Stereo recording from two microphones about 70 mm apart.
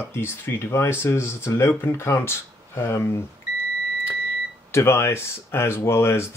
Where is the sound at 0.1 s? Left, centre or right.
Left.